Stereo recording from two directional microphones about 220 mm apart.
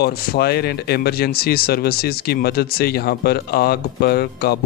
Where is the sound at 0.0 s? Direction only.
45° left (ahead or behind).